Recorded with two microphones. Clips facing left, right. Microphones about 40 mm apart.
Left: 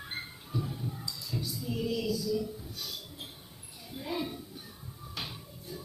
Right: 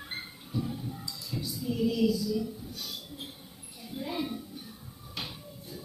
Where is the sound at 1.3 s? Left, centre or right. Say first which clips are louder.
Right 3 dB; centre.